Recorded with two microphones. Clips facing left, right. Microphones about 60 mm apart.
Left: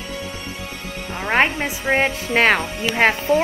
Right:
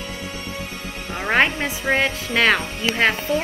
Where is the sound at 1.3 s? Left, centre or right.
Centre.